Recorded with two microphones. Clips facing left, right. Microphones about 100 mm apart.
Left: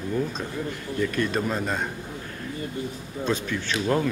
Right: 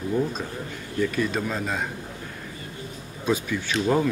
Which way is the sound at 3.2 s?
10° right (ahead or behind).